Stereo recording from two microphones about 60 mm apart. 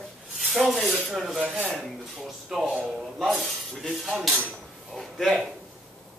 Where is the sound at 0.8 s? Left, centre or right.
Centre.